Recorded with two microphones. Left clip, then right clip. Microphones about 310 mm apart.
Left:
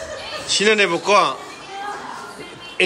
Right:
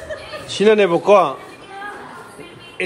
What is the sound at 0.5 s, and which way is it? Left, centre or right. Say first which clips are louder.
Speech: right 2 dB; centre.